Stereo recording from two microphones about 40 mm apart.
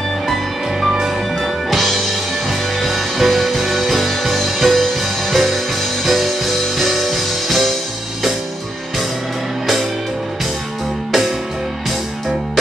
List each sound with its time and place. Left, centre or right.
0.3 s music: centre
11.1 s music: centre